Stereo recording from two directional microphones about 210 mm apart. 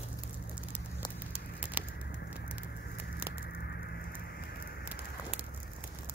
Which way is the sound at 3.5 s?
50° left (ahead or behind).